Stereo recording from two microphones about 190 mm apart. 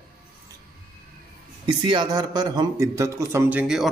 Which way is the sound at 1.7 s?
25° right (ahead or behind).